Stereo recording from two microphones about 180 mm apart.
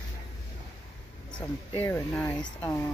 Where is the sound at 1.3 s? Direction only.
25° left (ahead or behind).